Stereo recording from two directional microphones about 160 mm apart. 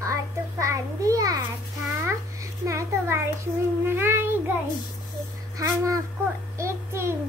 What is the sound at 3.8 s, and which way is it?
Child singing, 15° right (ahead or behind).